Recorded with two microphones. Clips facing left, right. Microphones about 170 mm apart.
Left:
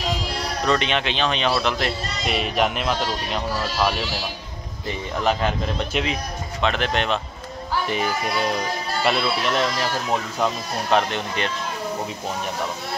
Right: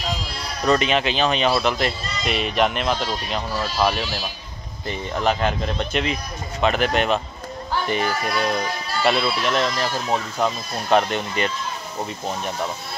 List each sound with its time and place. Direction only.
0.2 s sheep: 70° left (ahead or behind)
0.7 s a man's voice: 5° right (ahead or behind)
5.2 s a man's voice: centre (ahead or behind)
7.7 s a man's voice: 5° left (ahead or behind)